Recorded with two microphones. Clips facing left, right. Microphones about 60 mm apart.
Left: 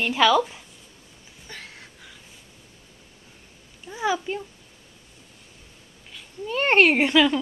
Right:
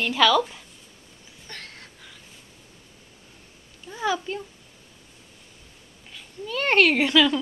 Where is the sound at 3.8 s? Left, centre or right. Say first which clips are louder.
Left 1 dB; centre.